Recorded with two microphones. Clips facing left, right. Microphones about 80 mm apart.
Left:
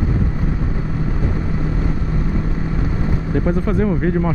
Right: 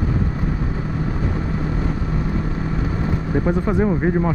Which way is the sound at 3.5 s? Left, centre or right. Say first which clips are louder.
Even; centre.